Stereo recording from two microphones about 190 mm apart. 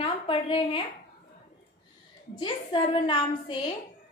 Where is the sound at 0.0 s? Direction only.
30° left (ahead or behind).